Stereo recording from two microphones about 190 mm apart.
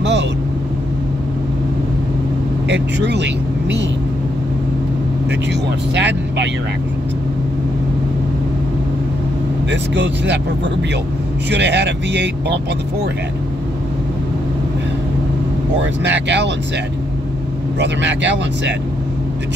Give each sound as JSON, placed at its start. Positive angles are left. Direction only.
{"t": 2.7, "sound": "speech", "side_deg": -65}
{"t": 5.9, "sound": "speech", "side_deg": -65}
{"t": 9.7, "sound": "speech", "side_deg": -70}
{"t": 11.5, "sound": "speech", "side_deg": -65}
{"t": 16.0, "sound": "speech", "side_deg": -65}
{"t": 17.7, "sound": "speech", "side_deg": -70}